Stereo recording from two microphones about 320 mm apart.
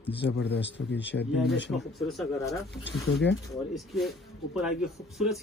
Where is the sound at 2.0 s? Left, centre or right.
Centre.